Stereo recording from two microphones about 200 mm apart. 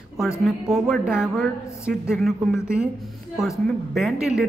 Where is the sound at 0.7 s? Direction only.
Centre (ahead or behind).